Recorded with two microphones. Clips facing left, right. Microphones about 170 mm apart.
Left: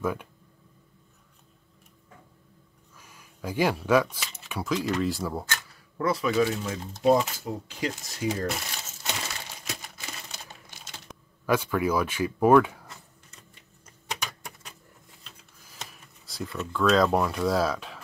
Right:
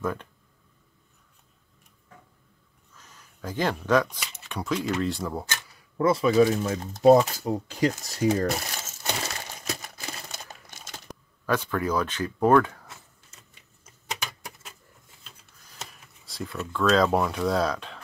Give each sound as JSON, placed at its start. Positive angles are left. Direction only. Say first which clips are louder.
{"t": 0.0, "sound": "speech", "louder": "left 1 dB", "side_deg": 10}
{"t": 3.0, "sound": "speech", "louder": "left 1 dB", "side_deg": 10}
{"t": 5.5, "sound": "speech", "louder": "left 1 dB", "side_deg": -20}
{"t": 9.7, "sound": "computer keyboard", "louder": "right 5 dB", "side_deg": -40}
{"t": 11.1, "sound": "a sound", "louder": "right 4 dB", "side_deg": 0}
{"t": 11.4, "sound": "speech", "louder": "left 1 dB", "side_deg": 10}
{"t": 12.8, "sound": "typing", "louder": "left 1 dB", "side_deg": 0}